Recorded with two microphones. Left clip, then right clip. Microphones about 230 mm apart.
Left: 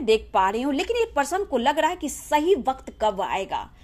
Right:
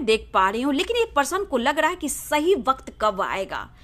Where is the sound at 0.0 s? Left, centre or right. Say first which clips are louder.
Even; right.